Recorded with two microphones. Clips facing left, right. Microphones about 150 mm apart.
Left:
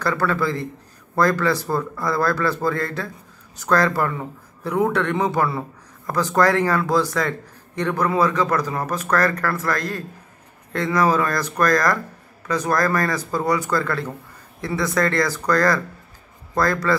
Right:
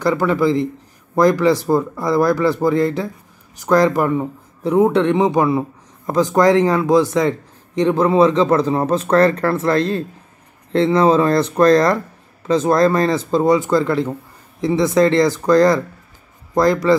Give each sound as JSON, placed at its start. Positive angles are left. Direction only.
{"t": 0.0, "sound": "speech", "side_deg": -20}